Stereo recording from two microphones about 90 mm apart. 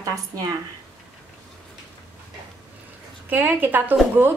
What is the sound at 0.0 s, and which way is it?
Speech, 40° right (ahead or behind).